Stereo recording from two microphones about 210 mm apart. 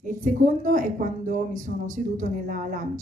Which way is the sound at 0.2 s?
40° right (ahead or behind).